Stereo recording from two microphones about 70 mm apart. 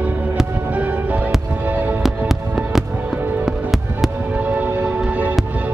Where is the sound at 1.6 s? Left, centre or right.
Right.